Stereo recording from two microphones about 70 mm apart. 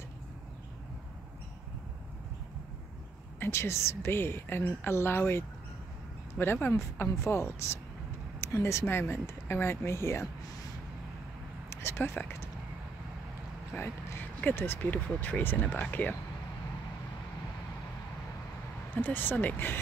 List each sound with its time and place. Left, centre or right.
3.3 s a woman's voice: left
11.7 s speech: left
13.7 s a woman's voice: left
18.9 s speech: left